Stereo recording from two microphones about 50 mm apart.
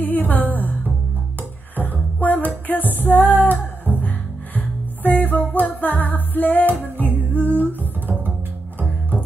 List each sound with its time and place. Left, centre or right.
0.0 s music: left
1.8 s music: left